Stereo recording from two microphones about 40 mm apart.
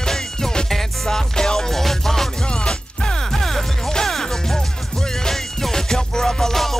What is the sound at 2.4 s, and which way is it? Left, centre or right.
Music, left.